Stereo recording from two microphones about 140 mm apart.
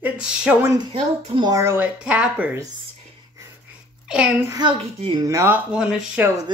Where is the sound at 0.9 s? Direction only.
35° right (ahead or behind).